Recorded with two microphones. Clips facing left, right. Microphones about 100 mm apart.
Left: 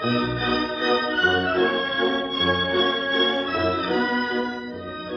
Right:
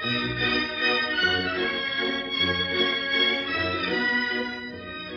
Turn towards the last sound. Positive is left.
turn(degrees=35)  # may be behind; listen again after turning